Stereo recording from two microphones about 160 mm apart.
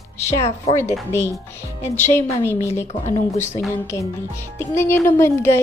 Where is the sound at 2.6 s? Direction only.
15° left (ahead or behind).